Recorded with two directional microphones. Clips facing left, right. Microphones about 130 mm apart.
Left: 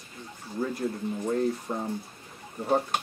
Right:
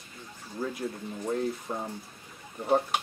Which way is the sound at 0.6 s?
Centre (ahead or behind).